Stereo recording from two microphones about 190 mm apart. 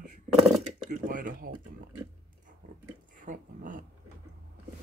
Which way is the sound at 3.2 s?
45° right (ahead or behind).